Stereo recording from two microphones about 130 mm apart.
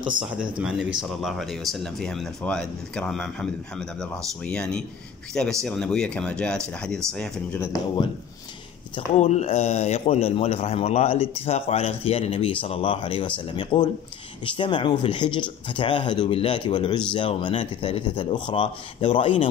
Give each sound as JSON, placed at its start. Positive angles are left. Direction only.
{"t": 0.6, "sound": "speech", "side_deg": -5}
{"t": 9.2, "sound": "a man's voice", "side_deg": 60}